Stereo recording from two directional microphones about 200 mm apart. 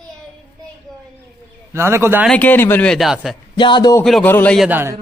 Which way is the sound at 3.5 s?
25° left (ahead or behind).